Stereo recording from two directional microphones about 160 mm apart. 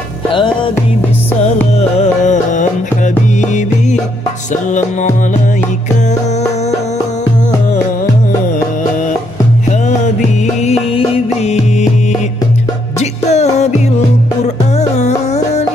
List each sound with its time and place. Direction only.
1.8 s music: 50° left (ahead or behind)
4.5 s music: 50° left (ahead or behind)
10.6 s music: 40° left (ahead or behind)
13.0 s music: 45° left (ahead or behind)
14.8 s music: 45° left (ahead or behind)